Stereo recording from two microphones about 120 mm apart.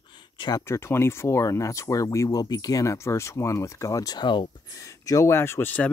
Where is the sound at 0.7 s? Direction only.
20° left (ahead or behind); by 4.5 s 40° left (ahead or behind).